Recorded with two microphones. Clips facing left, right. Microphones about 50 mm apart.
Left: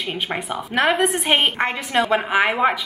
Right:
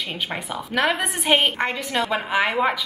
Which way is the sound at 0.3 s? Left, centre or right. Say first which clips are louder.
Left 3 dB; centre.